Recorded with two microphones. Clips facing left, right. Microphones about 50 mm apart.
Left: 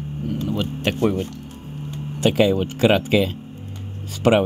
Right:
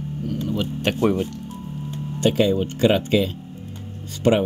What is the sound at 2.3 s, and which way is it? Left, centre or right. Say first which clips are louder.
Speech: left 1 dB; left.